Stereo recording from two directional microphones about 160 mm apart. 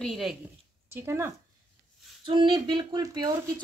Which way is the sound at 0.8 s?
15° right (ahead or behind).